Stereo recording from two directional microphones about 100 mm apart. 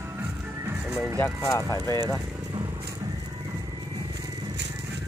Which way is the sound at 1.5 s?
35° left (ahead or behind).